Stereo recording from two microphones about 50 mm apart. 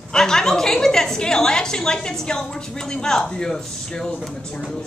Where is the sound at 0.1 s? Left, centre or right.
Centre.